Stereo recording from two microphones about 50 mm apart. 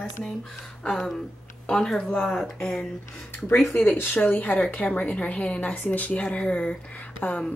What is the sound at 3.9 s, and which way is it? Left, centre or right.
Speech, left.